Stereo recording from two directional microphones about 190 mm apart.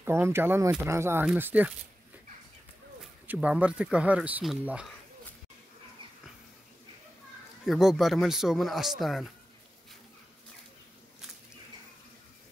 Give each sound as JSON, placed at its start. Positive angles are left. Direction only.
{"t": 0.0, "sound": "speech", "side_deg": -15}
{"t": 3.3, "sound": "speech", "side_deg": -5}
{"t": 7.6, "sound": "speech", "side_deg": 0}